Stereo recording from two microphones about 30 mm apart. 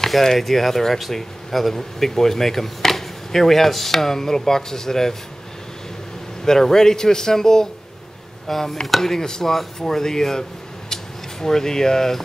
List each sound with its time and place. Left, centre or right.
0.0 s speech: centre
6.4 s a man's voice: centre
10.9 s a sound: centre